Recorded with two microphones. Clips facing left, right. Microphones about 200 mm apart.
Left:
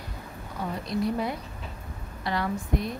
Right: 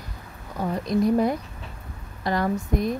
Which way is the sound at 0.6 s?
45° right (ahead or behind).